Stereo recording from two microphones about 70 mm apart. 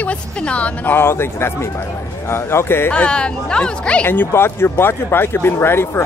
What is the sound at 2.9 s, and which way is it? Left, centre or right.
Speech, centre.